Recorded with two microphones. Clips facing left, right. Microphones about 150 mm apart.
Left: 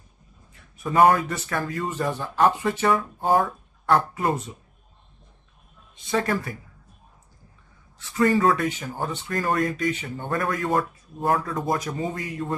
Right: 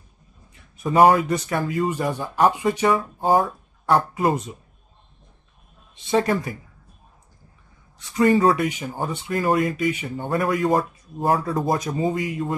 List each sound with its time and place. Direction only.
0.9 s speech: 15° right (ahead or behind)
5.9 s speech: 25° right (ahead or behind)
8.0 s speech: 20° right (ahead or behind)
10.7 s speech: 35° right (ahead or behind)
12.1 s speech: 15° right (ahead or behind)